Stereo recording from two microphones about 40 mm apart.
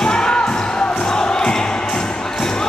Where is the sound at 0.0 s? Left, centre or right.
Centre.